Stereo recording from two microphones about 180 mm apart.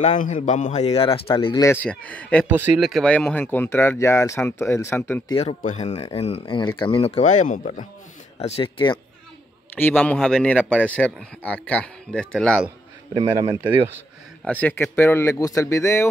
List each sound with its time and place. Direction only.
0.2 s speech: 45° left (ahead or behind); by 2.4 s 5° left (ahead or behind)
2.4 s speech: 10° right (ahead or behind)
2.9 s speech: 5° left (ahead or behind)
5.3 s speech: 30° left (ahead or behind)
5.6 s speech: 40° left (ahead or behind)
8.4 s speech: 35° left (ahead or behind)
9.8 s speech: 10° left (ahead or behind)
13.1 s speech: 20° right (ahead or behind)
14.4 s speech: 10° left (ahead or behind)